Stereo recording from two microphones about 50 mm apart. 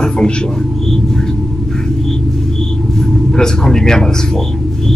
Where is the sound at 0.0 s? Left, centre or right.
Centre.